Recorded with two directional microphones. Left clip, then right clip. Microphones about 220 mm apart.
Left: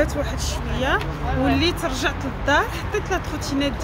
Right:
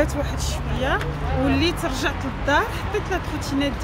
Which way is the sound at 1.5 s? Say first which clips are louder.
Left 1 dB; 5° left (ahead or behind).